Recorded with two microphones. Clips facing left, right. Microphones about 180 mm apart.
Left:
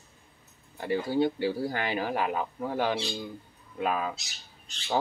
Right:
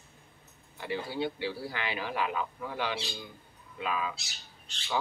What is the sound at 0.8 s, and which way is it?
Speech, 45° left (ahead or behind).